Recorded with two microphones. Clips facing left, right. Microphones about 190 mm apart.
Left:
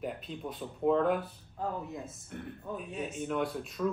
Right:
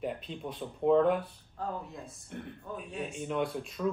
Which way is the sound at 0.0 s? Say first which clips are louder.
Right 1 dB; centre (ahead or behind).